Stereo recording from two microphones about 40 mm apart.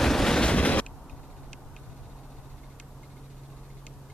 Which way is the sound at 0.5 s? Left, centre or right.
Left.